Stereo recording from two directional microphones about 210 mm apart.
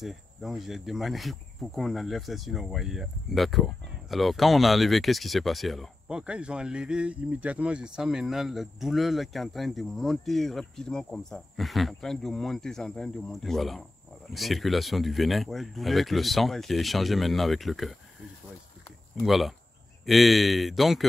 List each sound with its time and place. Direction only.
0.0 s speech: centre (ahead or behind)
18.9 s a sound: centre (ahead or behind)
20.1 s speech: centre (ahead or behind)